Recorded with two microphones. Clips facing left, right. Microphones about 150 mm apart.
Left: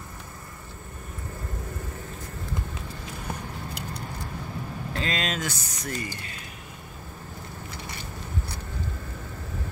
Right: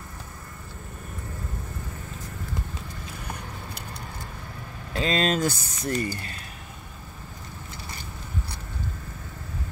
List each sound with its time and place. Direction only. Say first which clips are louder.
5.0 s speech: right 7 dB; 35° right (ahead or behind)